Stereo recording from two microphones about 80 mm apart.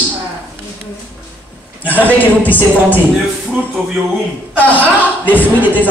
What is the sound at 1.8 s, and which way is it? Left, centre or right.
Speech, left.